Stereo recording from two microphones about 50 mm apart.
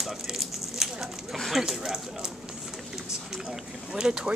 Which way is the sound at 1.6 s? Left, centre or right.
Centre.